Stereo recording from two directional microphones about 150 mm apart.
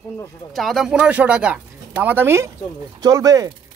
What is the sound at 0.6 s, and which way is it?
A man's voice, centre (ahead or behind).